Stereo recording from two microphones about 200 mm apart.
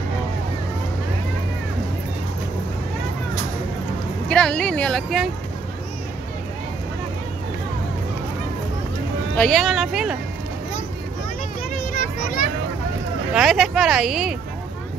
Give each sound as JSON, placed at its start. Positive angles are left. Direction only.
{"t": 4.3, "sound": "speech", "side_deg": 5}
{"t": 9.3, "sound": "speech", "side_deg": 5}
{"t": 11.9, "sound": "a sound", "side_deg": 45}
{"t": 13.3, "sound": "speech", "side_deg": 0}